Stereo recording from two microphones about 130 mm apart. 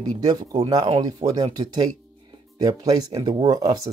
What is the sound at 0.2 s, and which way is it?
Speech, 30° right (ahead or behind).